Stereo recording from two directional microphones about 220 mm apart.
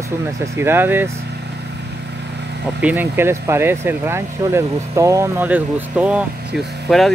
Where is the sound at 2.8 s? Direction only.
10° right (ahead or behind).